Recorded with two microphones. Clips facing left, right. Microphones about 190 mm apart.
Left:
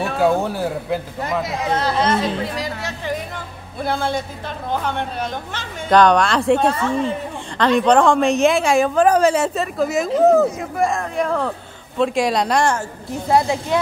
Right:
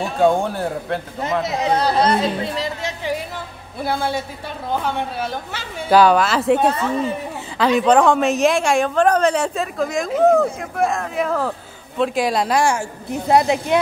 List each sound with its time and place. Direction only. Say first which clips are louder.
0.2 s a woman's voice: right 2 dB; 5° left (ahead or behind)
1.8 s speech: right 1 dB; 40° right (ahead or behind)
3.8 s a woman's voice: even; 5° right (ahead or behind)